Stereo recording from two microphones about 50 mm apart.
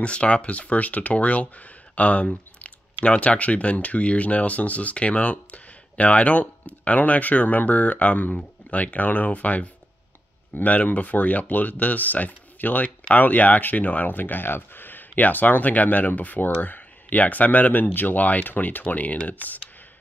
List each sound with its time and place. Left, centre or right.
0.0 s speech: left